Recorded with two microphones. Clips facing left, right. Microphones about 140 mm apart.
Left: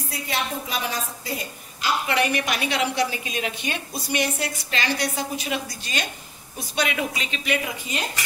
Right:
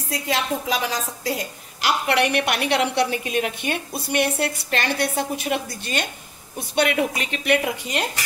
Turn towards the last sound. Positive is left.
turn(degrees=-65)  # may be behind; listen again after turning